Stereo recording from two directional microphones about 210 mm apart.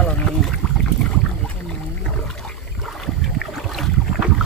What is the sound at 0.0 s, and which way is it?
Boat, 5° left (ahead or behind).